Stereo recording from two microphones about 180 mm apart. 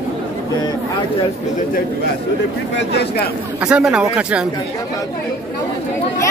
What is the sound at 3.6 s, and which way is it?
Speech, 5° right (ahead or behind).